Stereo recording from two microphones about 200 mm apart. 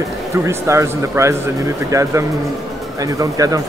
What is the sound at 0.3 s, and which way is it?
Speech, 15° right (ahead or behind).